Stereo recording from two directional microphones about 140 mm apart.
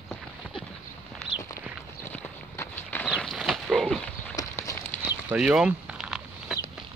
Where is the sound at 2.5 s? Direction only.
15° left (ahead or behind).